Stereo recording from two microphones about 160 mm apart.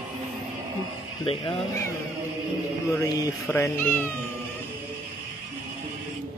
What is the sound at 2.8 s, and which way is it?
Speech, 20° left (ahead or behind).